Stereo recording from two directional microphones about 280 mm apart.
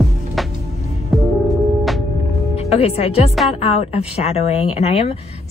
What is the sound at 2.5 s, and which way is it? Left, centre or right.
A woman's voice, left.